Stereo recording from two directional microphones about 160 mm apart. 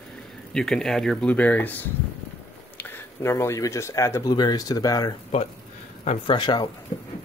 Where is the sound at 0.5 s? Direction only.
5° left (ahead or behind); by 6.7 s 30° left (ahead or behind).